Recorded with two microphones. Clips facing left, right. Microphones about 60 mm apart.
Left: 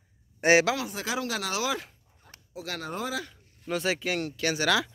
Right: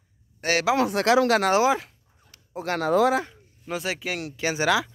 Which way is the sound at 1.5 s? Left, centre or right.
Right.